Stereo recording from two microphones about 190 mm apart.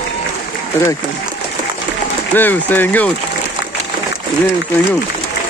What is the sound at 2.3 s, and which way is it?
Speech, 10° left (ahead or behind).